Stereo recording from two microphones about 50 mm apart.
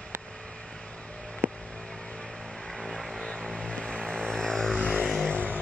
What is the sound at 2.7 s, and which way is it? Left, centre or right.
Vehicle, centre.